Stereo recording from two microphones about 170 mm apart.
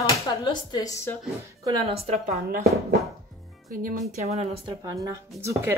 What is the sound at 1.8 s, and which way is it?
Speech, 35° right (ahead or behind).